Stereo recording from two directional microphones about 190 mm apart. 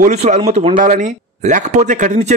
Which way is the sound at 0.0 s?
40° right (ahead or behind).